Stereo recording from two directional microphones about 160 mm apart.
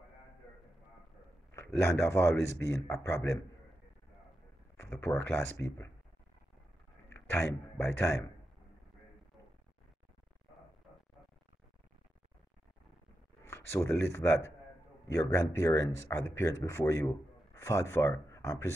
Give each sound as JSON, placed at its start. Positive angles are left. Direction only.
{"t": 1.5, "sound": "speech", "side_deg": 15}
{"t": 5.0, "sound": "speech", "side_deg": 15}
{"t": 7.1, "sound": "a man's voice", "side_deg": 15}
{"t": 13.4, "sound": "speech", "side_deg": 15}